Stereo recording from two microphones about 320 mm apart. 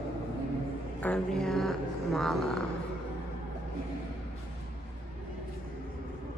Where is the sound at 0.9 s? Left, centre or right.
Centre.